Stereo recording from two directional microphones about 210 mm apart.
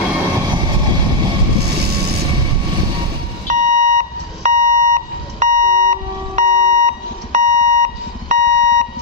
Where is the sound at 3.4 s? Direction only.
35° right (ahead or behind).